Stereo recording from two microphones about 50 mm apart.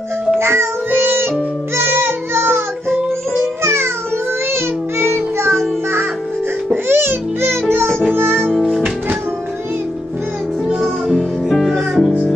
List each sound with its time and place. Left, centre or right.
0.4 s music: right
6.7 s music: right
11.1 s music: centre